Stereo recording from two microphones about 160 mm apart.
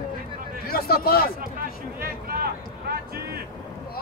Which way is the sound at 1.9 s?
70° right (ahead or behind).